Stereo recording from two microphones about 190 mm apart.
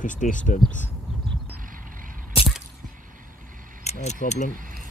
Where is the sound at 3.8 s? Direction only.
35° left (ahead or behind).